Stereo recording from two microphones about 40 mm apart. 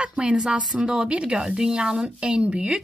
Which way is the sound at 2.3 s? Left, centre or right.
Right.